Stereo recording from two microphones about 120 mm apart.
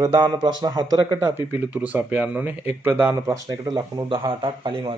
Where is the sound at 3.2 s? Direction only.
30° right (ahead or behind); by 4.9 s 45° right (ahead or behind).